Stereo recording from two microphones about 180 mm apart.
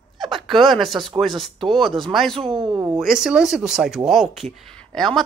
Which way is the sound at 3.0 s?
5° right (ahead or behind).